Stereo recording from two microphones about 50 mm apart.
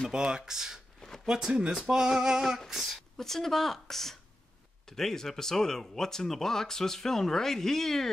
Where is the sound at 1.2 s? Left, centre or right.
Centre.